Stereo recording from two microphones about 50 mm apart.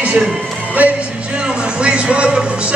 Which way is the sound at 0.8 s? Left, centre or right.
Right.